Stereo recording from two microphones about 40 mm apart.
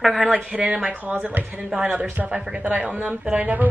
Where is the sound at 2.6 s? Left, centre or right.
Right.